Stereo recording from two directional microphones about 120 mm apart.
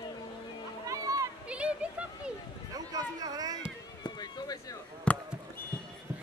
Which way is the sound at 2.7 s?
30° right (ahead or behind).